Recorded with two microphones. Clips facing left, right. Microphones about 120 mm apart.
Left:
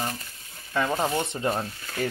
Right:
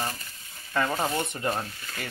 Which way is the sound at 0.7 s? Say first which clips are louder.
Left 1 dB; 15° left (ahead or behind).